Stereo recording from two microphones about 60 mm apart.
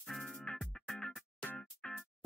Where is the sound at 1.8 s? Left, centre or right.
Left.